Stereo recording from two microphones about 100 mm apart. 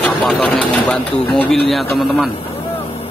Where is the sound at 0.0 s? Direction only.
5° left (ahead or behind).